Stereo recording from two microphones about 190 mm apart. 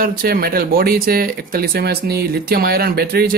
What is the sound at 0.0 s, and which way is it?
Speech, 50° right (ahead or behind).